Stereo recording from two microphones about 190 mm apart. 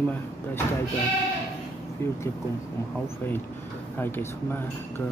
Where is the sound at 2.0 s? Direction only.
10° left (ahead or behind).